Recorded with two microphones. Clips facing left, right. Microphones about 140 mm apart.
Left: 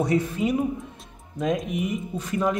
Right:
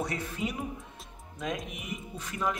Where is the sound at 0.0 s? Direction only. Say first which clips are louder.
Left 10 dB; 20° left (ahead or behind).